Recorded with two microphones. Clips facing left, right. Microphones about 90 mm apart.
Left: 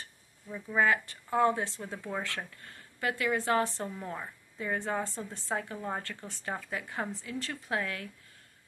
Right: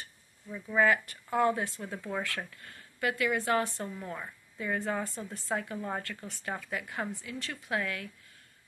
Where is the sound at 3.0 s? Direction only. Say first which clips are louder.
Right 1 dB; 30° left (ahead or behind).